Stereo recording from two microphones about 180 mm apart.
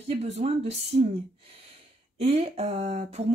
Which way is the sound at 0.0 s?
35° right (ahead or behind).